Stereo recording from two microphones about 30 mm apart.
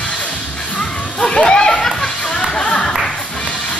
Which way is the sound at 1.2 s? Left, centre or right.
Left.